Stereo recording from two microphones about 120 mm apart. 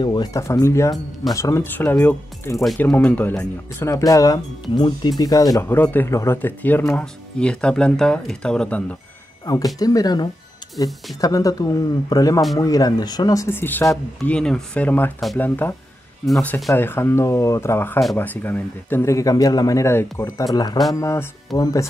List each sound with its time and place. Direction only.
0.0 s speech: 35° left (ahead or behind); by 3.9 s 15° left (ahead or behind)
3.9 s speech: 30° left (ahead or behind)
5.7 s speech: 15° left (ahead or behind)
9.8 s speech: 30° left (ahead or behind)
14.2 s speech: 5° left (ahead or behind)
20.5 s speech: 35° left (ahead or behind)